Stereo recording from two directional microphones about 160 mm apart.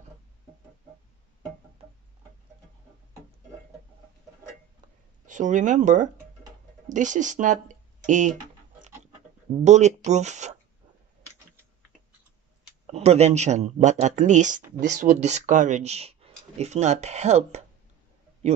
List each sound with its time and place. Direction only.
5.2 s speech: 50° right (ahead or behind)
9.7 s speech: 45° right (ahead or behind)
12.8 s speech: 45° right (ahead or behind)